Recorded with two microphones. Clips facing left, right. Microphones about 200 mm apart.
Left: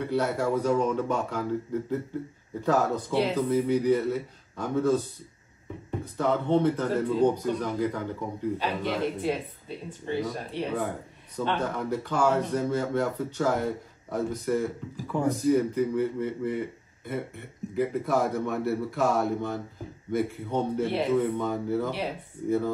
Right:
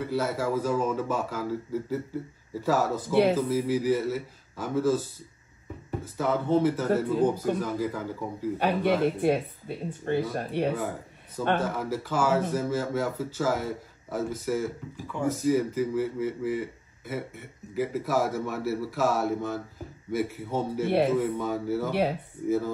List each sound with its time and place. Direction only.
0.0 s speech: 5° right (ahead or behind)
8.5 s speech: 55° right (ahead or behind)
10.7 s speech: 5° right (ahead or behind)